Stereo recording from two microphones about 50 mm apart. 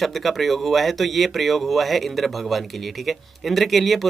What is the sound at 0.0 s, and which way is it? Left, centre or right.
Speech, centre.